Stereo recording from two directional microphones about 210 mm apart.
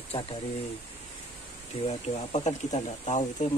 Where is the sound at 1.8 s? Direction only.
30° left (ahead or behind).